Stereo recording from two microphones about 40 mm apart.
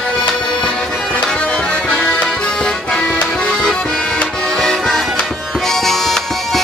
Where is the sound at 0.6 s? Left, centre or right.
Left.